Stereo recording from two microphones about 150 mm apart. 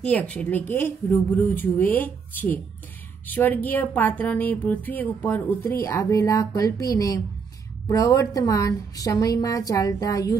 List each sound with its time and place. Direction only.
0.0 s a woman's voice: 10° left (ahead or behind)